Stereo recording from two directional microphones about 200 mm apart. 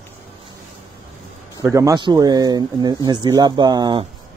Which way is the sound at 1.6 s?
15° right (ahead or behind).